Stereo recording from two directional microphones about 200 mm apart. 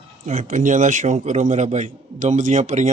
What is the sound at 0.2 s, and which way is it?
A man's voice, 35° right (ahead or behind).